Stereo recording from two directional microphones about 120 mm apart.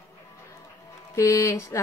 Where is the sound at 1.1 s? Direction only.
25° left (ahead or behind).